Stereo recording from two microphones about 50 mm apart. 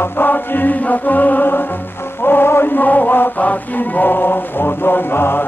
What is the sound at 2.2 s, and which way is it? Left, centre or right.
Mantra, left.